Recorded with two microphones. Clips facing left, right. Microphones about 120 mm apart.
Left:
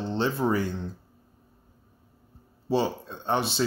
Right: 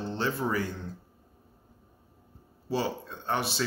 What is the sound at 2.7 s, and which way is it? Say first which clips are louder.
Speech: left 5 dB; 25° left (ahead or behind).